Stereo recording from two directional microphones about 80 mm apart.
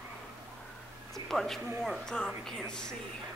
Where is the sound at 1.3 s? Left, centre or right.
Centre.